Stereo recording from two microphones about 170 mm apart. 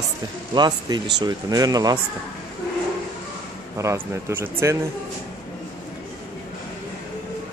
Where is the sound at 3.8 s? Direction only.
15° right (ahead or behind).